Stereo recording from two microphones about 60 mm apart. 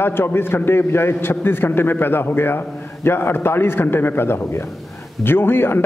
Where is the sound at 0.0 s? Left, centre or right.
Left.